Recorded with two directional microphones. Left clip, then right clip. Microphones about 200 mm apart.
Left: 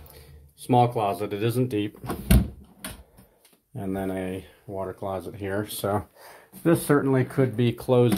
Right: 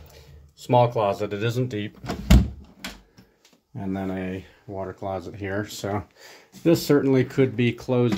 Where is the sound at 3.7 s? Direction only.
10° left (ahead or behind).